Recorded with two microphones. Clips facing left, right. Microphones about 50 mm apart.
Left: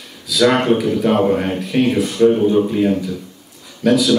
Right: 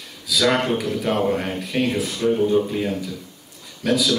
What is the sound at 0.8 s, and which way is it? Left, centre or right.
A man's voice, centre.